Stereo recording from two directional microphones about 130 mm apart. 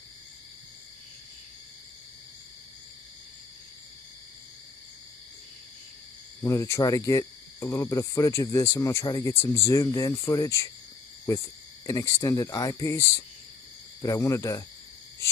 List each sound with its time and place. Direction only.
6.4 s cricket: 25° left (ahead or behind)